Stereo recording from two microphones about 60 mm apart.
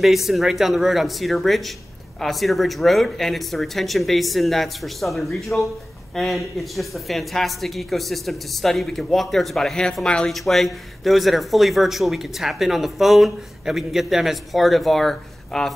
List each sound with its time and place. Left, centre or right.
0.0 s speech: centre
10.3 s speech: centre